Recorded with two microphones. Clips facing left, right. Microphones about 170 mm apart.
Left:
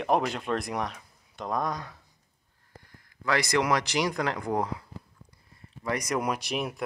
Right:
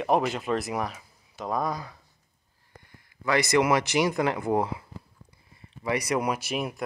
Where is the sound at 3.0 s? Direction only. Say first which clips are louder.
Right 2 dB; centre (ahead or behind).